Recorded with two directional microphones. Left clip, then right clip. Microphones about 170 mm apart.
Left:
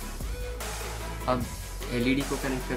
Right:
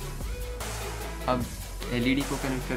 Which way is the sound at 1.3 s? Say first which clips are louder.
Even; 25° right (ahead or behind).